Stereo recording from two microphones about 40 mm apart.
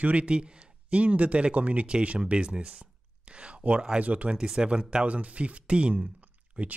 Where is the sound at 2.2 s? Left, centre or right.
Right.